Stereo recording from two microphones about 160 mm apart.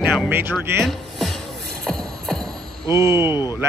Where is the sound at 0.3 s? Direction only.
15° right (ahead or behind).